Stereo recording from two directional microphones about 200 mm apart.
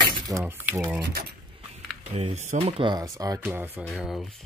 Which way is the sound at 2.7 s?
25° right (ahead or behind).